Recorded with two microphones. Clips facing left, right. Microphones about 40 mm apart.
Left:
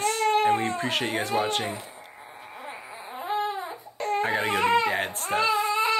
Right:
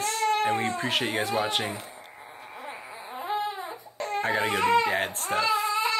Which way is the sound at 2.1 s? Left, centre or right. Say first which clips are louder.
Even; centre.